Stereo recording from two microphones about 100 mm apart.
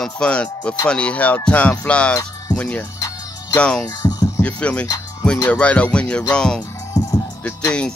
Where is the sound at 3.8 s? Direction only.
40° left (ahead or behind).